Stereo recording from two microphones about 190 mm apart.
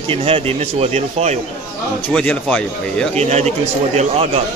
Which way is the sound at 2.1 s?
5° left (ahead or behind).